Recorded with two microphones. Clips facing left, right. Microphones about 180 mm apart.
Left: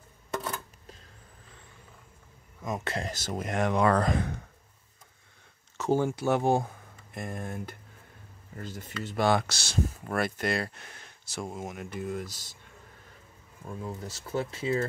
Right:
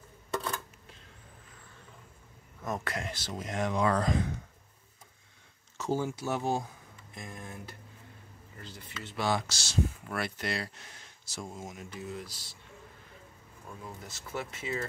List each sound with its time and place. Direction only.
2.8 s speech: 25° left (ahead or behind)
3.1 s speech: 45° left (ahead or behind)
5.8 s speech: 60° left (ahead or behind)
13.8 s speech: 35° left (ahead or behind)